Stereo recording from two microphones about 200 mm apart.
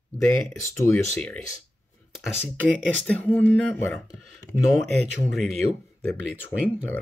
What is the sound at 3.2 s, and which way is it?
Speech, 10° left (ahead or behind).